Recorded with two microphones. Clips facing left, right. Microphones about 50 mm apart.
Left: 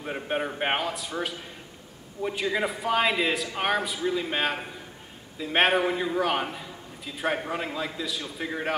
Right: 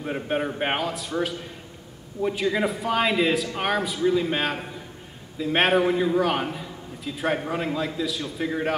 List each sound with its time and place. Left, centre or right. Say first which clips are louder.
0.0 s a man's voice: right 3 dB; centre